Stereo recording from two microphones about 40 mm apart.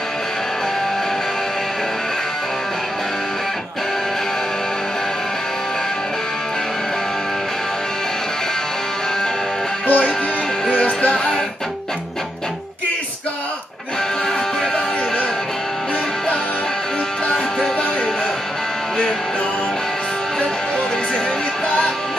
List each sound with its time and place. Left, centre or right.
9.8 s music: left
10.7 s music: left
17.3 s music: left